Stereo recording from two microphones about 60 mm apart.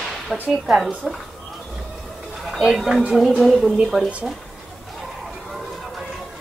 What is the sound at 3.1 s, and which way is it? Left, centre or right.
Speech, centre.